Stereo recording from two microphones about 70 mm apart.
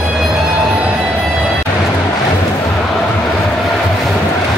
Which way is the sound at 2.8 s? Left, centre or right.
Centre.